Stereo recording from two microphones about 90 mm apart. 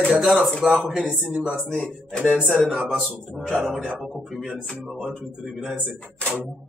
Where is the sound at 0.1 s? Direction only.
Centre (ahead or behind).